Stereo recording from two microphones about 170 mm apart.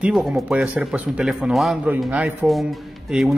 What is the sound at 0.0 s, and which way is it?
Speech, 5° right (ahead or behind).